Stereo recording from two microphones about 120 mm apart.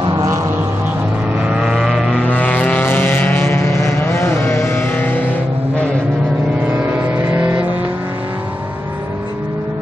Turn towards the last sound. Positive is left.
turn(degrees=-15)  # may be behind; listen again after turning